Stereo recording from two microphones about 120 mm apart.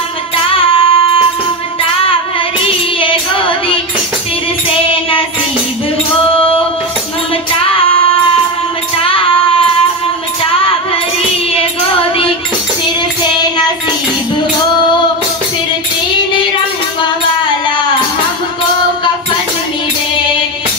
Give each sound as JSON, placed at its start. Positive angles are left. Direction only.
{"t": 0.5, "sound": "music", "side_deg": 50}
{"t": 3.0, "sound": "child singing", "side_deg": 45}
{"t": 8.9, "sound": "music", "side_deg": 50}
{"t": 11.5, "sound": "music", "side_deg": 50}